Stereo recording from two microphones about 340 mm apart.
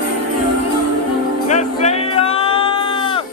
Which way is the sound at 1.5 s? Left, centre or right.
Centre.